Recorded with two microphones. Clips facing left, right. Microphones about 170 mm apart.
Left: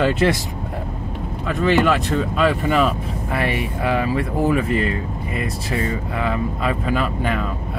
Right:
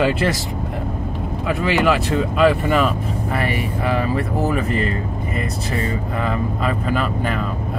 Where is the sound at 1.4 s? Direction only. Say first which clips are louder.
Left 1 dB; 10° right (ahead or behind).